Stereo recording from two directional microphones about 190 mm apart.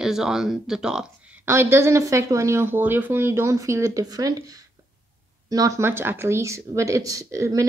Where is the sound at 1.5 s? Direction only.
15° right (ahead or behind).